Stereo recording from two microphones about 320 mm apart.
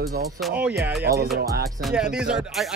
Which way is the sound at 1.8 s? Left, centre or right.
Centre.